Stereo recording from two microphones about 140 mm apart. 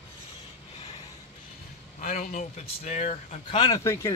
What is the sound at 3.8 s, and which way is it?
Speech, 20° left (ahead or behind).